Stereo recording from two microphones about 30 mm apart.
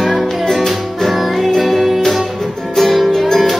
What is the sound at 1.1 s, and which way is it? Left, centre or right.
Music, centre.